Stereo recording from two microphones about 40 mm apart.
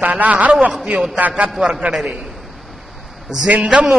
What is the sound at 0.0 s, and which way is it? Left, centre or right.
A man's voice, right.